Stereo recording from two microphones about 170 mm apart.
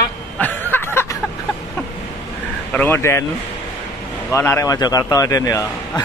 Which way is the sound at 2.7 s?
10° left (ahead or behind).